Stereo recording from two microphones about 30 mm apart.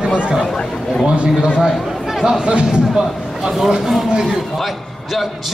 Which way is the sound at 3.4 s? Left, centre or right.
Centre.